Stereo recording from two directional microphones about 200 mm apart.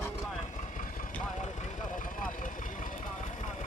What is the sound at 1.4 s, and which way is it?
Vehicle, 40° left (ahead or behind).